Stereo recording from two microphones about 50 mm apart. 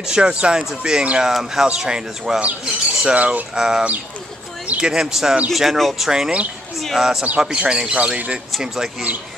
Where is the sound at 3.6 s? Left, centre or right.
Centre.